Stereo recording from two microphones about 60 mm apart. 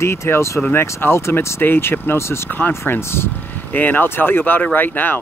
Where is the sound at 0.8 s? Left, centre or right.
Left.